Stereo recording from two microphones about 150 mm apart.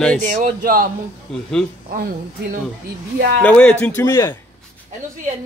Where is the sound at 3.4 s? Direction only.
10° left (ahead or behind).